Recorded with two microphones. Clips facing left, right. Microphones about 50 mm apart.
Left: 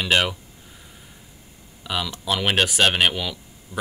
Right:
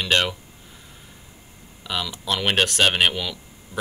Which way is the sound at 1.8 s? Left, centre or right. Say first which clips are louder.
Left 1 dB; centre.